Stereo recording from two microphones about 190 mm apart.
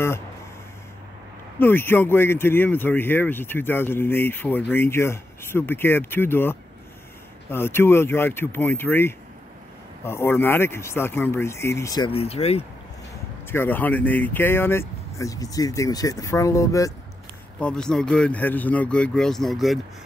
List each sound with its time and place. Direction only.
1.6 s speech: 10° left (ahead or behind)
12.1 s speech: 30° left (ahead or behind)
13.5 s speech: 10° left (ahead or behind)
17.6 s speech: 5° left (ahead or behind)